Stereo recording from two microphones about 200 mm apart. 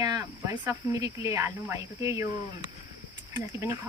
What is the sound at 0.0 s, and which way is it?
Speech, 15° right (ahead or behind).